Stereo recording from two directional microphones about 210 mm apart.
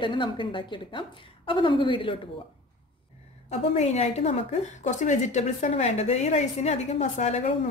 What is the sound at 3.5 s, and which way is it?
A woman's voice, 30° left (ahead or behind).